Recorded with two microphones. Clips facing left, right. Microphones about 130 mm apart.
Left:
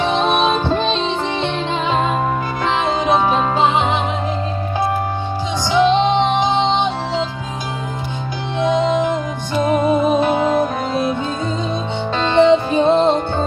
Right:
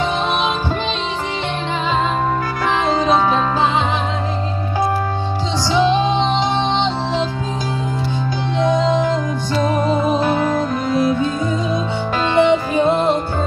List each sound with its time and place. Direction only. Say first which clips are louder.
0.0 s music: left 3 dB; 20° left (ahead or behind)
2.9 s music: right 1 dB; 20° left (ahead or behind)
5.7 s music: left 2 dB; 20° left (ahead or behind)
8.5 s music: even; 20° left (ahead or behind)
12.4 s music: left 2 dB; 25° left (ahead or behind)